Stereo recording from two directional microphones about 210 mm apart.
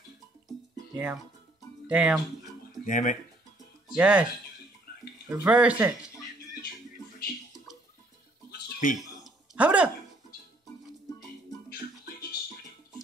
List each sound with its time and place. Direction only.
0.5 s music: 5° right (ahead or behind)
1.9 s speech: 5° right (ahead or behind)
2.8 s speech: 35° left (ahead or behind)
3.9 s speech: 5° right (ahead or behind)
4.9 s a sound: 45° left (ahead or behind)
5.3 s speech: 5° right (ahead or behind)
8.8 s speech: 35° left (ahead or behind)
9.2 s a sound: 5° right (ahead or behind)